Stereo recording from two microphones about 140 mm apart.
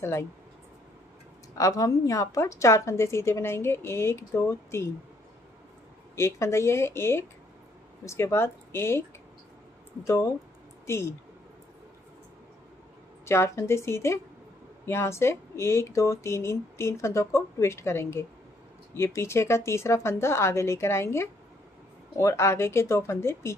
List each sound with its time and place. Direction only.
0.0 s a woman's voice: 20° left (ahead or behind)
1.5 s a woman's voice: 25° left (ahead or behind)
6.1 s a woman's voice: 20° left (ahead or behind)
10.0 s a woman's voice: 20° left (ahead or behind)
13.2 s a woman's voice: 20° left (ahead or behind)